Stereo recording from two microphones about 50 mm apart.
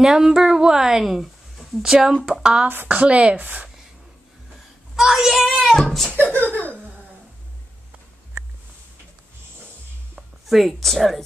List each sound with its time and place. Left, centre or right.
0.0 s a woman's voice: centre
4.9 s speech: centre
6.1 s speech: right
10.1 s a woman's voice: centre